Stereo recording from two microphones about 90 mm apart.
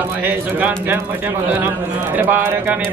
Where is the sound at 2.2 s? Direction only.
20° right (ahead or behind).